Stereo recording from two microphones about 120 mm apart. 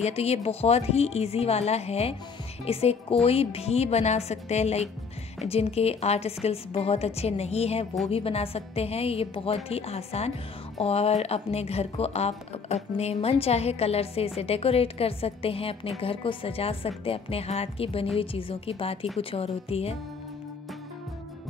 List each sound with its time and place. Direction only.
0.0 s a woman's voice: 60° left (ahead or behind)